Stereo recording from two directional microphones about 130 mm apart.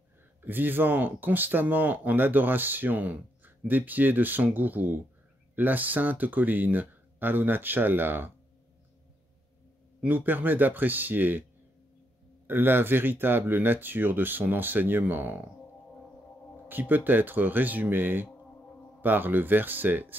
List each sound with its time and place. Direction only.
0.4 s speech: 15° right (ahead or behind)
10.0 s speech: 15° right (ahead or behind)
12.4 s speech: 15° right (ahead or behind)
16.6 s speech: 15° right (ahead or behind)